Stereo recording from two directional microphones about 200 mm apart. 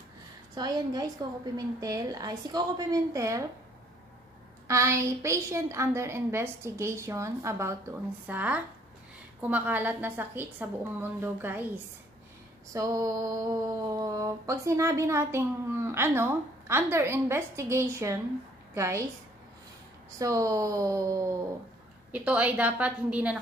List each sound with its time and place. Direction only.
0.6 s a woman's voice: 20° right (ahead or behind)
4.6 s a woman's voice: 15° right (ahead or behind)
20.2 s a woman's voice: 15° right (ahead or behind)